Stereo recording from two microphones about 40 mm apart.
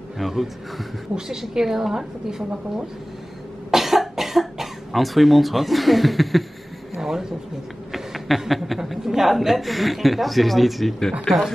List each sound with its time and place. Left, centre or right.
0.2 s a woman's voice: centre
1.1 s a woman's voice: right
1.5 s a woman's voice: centre
3.7 s cough: centre
7.0 s a woman's voice: centre